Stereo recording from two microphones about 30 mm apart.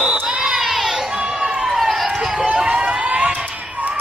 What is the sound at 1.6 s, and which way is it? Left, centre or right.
Run, centre.